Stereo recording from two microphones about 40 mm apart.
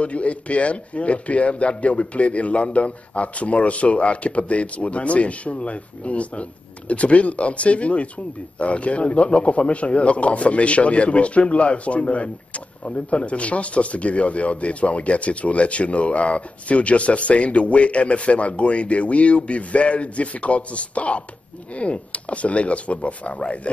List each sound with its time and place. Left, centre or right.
0.0 s speech: left